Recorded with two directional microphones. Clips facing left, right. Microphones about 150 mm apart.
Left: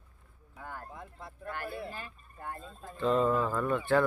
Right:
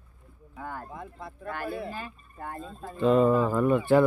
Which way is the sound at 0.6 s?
90° right.